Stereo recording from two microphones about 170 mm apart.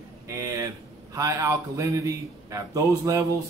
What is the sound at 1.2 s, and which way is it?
A man's voice, 20° right (ahead or behind).